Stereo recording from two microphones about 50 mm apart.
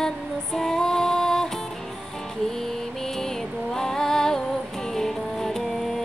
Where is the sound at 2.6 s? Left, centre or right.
Centre.